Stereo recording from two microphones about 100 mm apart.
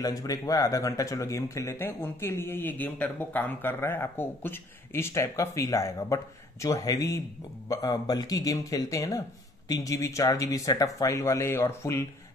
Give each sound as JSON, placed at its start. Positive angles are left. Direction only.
{"t": 0.0, "sound": "speech", "side_deg": 35}